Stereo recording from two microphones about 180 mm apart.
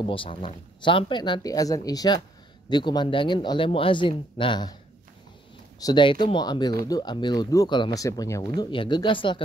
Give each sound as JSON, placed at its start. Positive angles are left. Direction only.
{"t": 0.0, "sound": "speech", "side_deg": 30}
{"t": 5.8, "sound": "speech", "side_deg": 25}